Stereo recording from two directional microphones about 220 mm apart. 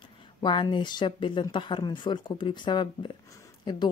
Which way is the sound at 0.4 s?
20° left (ahead or behind).